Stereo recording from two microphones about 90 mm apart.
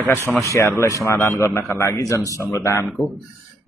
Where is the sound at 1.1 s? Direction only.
25° left (ahead or behind).